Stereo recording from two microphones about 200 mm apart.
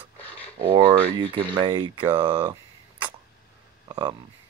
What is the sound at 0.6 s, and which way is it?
Speech, 25° right (ahead or behind).